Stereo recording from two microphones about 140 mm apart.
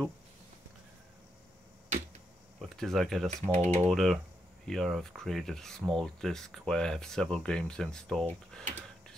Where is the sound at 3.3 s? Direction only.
55° right (ahead or behind).